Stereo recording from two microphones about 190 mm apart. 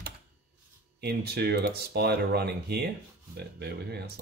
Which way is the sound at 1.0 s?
55° right (ahead or behind).